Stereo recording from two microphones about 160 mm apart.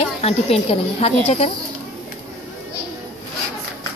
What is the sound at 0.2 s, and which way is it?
Speech, 40° left (ahead or behind).